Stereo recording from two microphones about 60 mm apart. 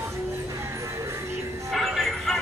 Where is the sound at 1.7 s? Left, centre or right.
Centre.